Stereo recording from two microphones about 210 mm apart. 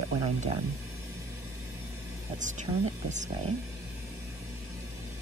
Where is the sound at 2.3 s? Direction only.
35° right (ahead or behind).